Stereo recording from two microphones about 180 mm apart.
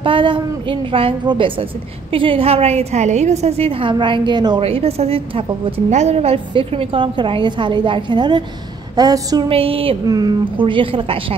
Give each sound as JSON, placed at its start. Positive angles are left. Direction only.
{"t": 0.0, "sound": "a woman's voice", "side_deg": -30}
{"t": 9.5, "sound": "a woman's voice", "side_deg": -30}